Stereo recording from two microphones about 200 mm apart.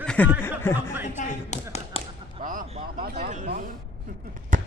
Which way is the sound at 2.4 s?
40° right (ahead or behind).